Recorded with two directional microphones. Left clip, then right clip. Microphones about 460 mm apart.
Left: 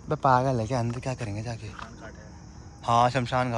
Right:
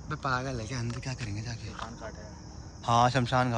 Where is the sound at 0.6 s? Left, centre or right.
Centre.